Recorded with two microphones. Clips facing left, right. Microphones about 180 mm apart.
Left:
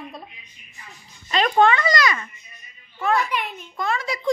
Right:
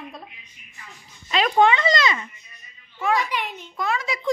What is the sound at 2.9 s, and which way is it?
Speech, 10° right (ahead or behind).